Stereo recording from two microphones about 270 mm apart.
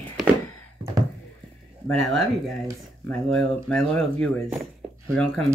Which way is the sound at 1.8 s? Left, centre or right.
Centre.